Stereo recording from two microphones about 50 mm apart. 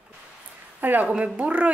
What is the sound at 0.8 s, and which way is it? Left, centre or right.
Speech, right.